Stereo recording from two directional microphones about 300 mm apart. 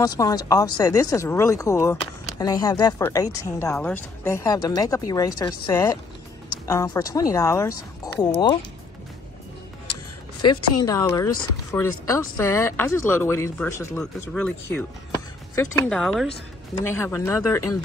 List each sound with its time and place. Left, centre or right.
0.0 s speech: centre
10.9 s speech: centre